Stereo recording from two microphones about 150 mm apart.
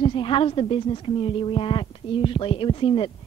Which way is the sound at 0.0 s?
35° left (ahead or behind).